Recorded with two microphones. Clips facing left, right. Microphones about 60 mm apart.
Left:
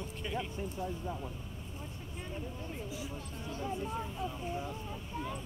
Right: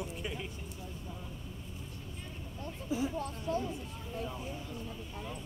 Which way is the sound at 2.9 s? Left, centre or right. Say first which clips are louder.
Right 14 dB; right.